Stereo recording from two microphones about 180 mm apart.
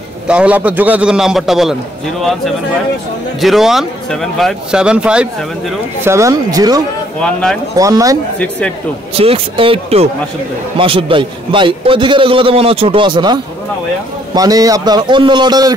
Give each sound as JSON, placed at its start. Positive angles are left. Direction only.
{"t": 0.3, "sound": "speech", "side_deg": -5}
{"t": 7.2, "sound": "speech", "side_deg": 5}
{"t": 7.7, "sound": "a man's voice", "side_deg": -20}
{"t": 8.4, "sound": "speech", "side_deg": 5}
{"t": 9.1, "sound": "a man's voice", "side_deg": -35}